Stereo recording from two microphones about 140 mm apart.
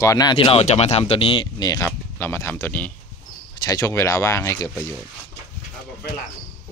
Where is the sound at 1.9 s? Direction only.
15° left (ahead or behind).